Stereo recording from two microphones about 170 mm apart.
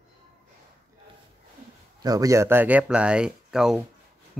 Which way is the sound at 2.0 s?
20° right (ahead or behind).